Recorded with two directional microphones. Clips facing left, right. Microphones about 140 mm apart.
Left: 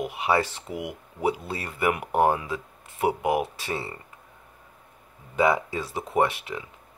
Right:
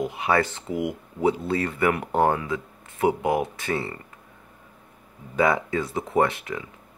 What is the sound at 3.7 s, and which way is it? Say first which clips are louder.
Speech: right 4 dB; 10° left (ahead or behind).